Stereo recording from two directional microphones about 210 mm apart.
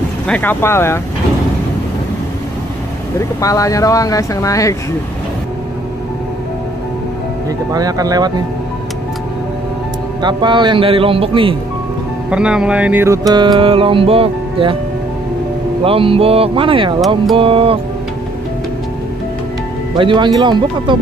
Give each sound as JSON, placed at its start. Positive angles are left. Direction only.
{"t": 0.3, "sound": "speech", "side_deg": 10}
{"t": 3.2, "sound": "speech", "side_deg": 15}
{"t": 7.7, "sound": "speech", "side_deg": -15}
{"t": 10.2, "sound": "music", "side_deg": -20}
{"t": 12.3, "sound": "music", "side_deg": -5}
{"t": 15.8, "sound": "music", "side_deg": -25}
{"t": 20.0, "sound": "music", "side_deg": -25}